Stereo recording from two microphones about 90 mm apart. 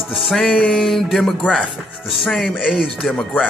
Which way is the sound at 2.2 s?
15° left (ahead or behind).